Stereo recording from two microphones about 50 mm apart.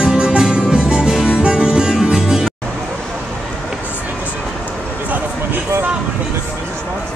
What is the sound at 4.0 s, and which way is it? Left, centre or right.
Music, right.